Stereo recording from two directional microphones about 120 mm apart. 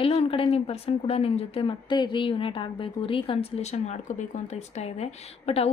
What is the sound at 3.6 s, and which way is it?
A woman's voice, 70° left (ahead or behind).